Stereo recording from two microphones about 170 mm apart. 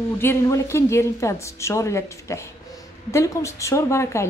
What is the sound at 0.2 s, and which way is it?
Speech, 15° left (ahead or behind).